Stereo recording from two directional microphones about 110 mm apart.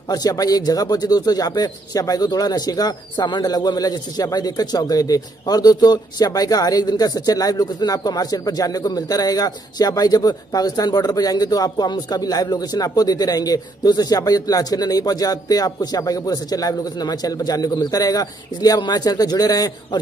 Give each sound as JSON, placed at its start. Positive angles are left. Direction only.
{"t": 0.1, "sound": "speech", "side_deg": 35}